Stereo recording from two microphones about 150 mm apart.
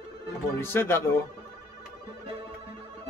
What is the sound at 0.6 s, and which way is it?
Speech, 15° left (ahead or behind).